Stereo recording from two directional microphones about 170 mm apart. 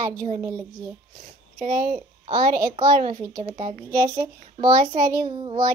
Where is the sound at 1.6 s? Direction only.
45° right (ahead or behind).